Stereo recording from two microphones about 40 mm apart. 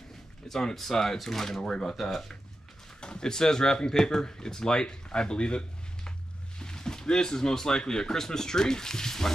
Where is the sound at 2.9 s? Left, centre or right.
Left.